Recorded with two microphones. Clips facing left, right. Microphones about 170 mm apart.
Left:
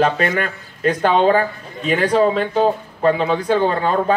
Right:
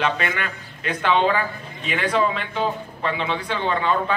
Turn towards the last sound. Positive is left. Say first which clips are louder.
# left 5 dB
turn(degrees=40)  # may be behind; listen again after turning